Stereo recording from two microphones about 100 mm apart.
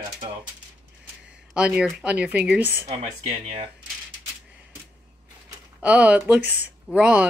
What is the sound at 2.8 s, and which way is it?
Speech, 90° right.